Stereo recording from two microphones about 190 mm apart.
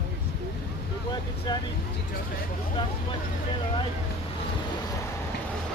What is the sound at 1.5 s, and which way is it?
Speech, 20° left (ahead or behind).